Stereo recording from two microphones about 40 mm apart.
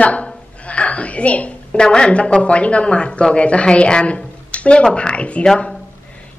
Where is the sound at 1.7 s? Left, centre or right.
Left.